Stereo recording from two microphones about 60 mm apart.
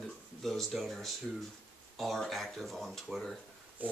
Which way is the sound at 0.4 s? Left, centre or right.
Centre.